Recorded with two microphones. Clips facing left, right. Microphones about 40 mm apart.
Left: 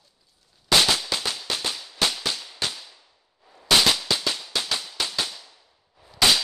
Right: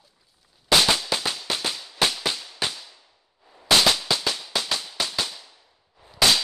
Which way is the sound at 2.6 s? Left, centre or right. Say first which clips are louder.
Right 1 dB; centre.